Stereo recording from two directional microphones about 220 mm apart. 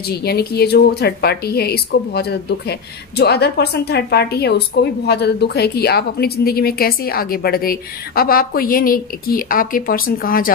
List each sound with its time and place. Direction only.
0.2 s a woman's voice: 45° left (ahead or behind)